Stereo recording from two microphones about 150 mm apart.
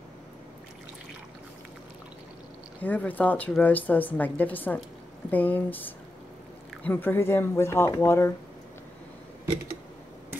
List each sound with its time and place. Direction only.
2.8 s a woman's voice: 10° left (ahead or behind)